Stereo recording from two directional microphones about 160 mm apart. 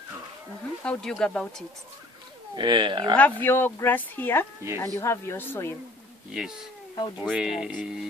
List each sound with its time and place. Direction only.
0.8 s speech: 5° left (ahead or behind)
2.5 s speech: 30° right (ahead or behind)
3.2 s speech: 10° left (ahead or behind)
6.3 s speech: 5° right (ahead or behind)